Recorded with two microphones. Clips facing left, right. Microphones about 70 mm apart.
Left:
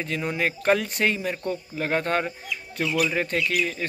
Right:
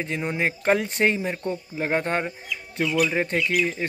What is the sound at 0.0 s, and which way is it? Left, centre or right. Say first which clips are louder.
Speech: right 1 dB; right.